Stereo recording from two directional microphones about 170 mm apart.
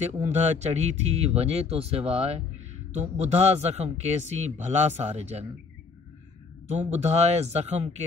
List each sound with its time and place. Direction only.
0.3 s a man's voice: 40° right (ahead or behind)
6.7 s a man's voice: 40° right (ahead or behind)